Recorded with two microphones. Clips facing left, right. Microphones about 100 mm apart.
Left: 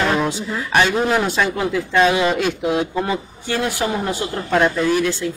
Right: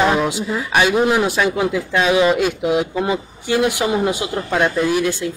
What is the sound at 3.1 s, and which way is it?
Speech, 15° right (ahead or behind).